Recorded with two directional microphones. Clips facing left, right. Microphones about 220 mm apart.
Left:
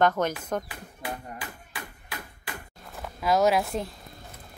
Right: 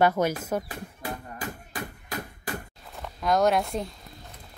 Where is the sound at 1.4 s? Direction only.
45° right (ahead or behind).